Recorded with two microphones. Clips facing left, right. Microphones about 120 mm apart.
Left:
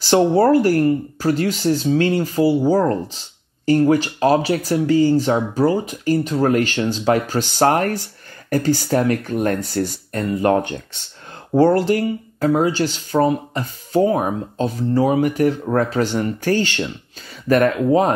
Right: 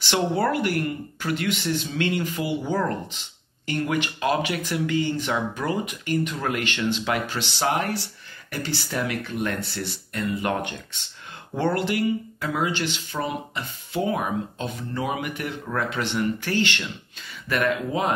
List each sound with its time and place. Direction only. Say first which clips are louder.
0.0 s speech: left 9 dB; 35° left (ahead or behind)